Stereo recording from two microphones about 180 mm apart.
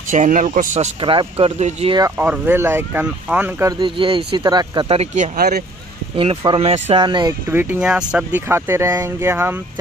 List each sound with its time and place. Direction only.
0.1 s speech: 45° right (ahead or behind)
1.0 s speech: 30° right (ahead or behind)
2.0 s speech: 15° right (ahead or behind)
3.8 s speech: 30° right (ahead or behind)
6.1 s speech: 30° right (ahead or behind)
7.4 s speech: 10° right (ahead or behind)